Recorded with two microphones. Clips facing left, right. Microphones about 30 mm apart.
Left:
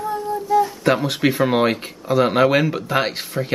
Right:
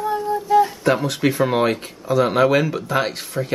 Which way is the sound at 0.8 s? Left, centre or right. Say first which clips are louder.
Left 1 dB; centre.